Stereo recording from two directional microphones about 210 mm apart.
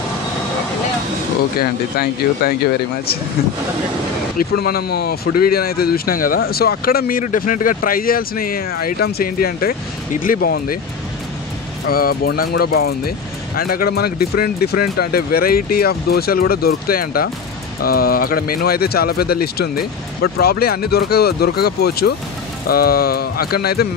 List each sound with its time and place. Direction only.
1.6 s speech: 45° left (ahead or behind)
4.4 s speech: 45° left (ahead or behind)
11.9 s speech: 45° left (ahead or behind)